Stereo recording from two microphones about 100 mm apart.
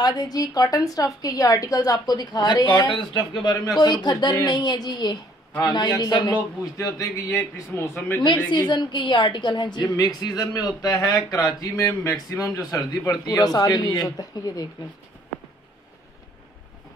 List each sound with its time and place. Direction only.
0.0 s a woman's voice: 40° left (ahead or behind)
3.5 s a woman's voice: 40° left (ahead or behind)
8.5 s a woman's voice: 50° left (ahead or behind)
11.8 s a woman's voice: 25° left (ahead or behind)